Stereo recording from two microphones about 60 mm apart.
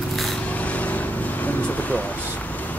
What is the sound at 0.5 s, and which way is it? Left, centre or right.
Vehicle, left.